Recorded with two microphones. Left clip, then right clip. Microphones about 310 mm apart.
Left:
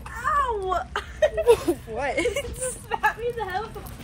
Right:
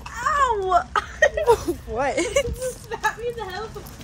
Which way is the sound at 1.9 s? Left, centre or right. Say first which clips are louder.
Right 6 dB; centre.